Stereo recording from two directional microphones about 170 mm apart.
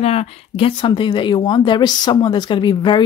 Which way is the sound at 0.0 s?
35° left (ahead or behind).